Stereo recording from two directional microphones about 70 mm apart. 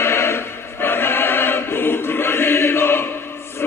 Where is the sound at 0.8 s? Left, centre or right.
Left.